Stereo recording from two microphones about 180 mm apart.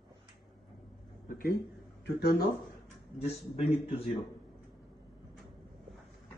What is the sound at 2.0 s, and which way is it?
Speech, 65° left (ahead or behind).